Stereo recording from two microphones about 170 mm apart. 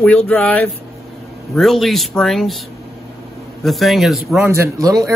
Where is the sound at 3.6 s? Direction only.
Centre (ahead or behind).